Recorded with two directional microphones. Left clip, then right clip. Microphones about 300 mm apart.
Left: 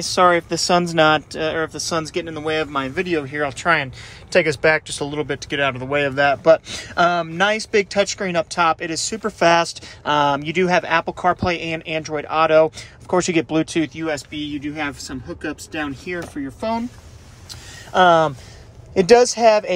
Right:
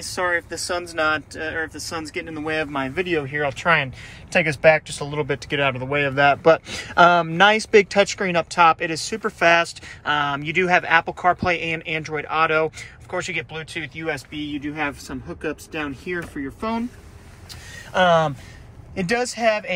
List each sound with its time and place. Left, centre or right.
0.0 s speech: centre
17.9 s speech: centre